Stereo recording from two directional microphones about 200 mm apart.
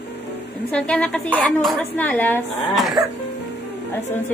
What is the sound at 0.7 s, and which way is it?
A woman's voice, 5° left (ahead or behind).